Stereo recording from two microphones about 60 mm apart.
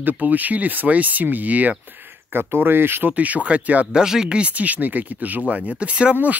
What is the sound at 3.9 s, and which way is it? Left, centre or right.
Speech, centre.